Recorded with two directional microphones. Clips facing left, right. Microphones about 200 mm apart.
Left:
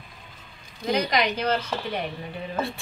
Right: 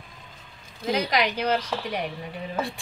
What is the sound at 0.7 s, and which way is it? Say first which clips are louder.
A woman's voice: left 1 dB; 5° right (ahead or behind).